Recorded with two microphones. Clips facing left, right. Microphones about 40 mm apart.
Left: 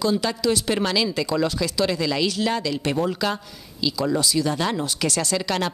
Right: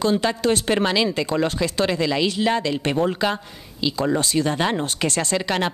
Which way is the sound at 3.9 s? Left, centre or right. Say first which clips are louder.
Right 1 dB; right.